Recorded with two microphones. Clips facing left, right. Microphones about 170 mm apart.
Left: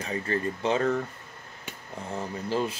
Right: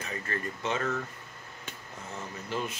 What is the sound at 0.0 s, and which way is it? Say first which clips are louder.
Speech: left 7 dB; 30° left (ahead or behind).